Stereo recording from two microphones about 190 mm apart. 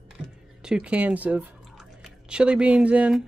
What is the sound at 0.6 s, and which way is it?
Drip, 5° right (ahead or behind).